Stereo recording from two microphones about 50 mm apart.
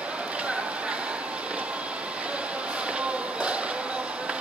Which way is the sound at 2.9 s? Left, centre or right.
Right.